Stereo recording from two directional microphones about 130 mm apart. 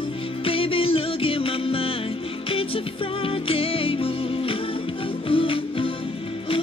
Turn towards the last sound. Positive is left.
turn(degrees=45)  # may be behind; listen again after turning